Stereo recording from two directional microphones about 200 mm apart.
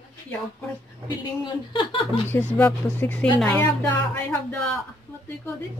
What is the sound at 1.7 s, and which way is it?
Speech, 25° left (ahead or behind).